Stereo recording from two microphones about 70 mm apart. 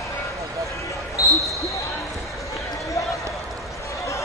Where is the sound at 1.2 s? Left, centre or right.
Left.